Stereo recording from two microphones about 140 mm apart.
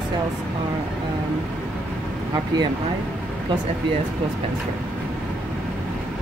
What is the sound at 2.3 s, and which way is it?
Speech, 30° right (ahead or behind).